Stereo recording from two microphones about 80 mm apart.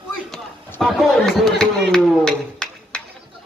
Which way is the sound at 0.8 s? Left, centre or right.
Centre.